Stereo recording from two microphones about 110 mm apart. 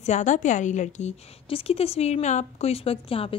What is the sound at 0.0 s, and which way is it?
A woman's voice, 90° left.